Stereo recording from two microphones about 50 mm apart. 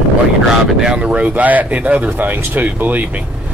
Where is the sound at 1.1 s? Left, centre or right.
Right.